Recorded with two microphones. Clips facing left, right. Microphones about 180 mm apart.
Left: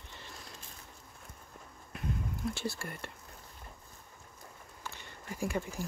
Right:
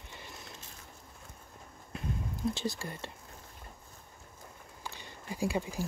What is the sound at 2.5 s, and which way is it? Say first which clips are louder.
Speech: right 2 dB; 15° right (ahead or behind).